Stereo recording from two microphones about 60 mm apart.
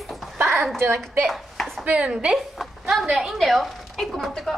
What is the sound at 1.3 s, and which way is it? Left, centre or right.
Chopping, centre.